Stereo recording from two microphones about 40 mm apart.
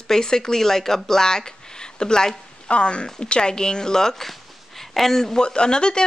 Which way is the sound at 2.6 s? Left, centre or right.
Left.